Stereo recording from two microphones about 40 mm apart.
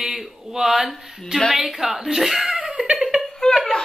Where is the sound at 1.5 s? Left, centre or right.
Centre.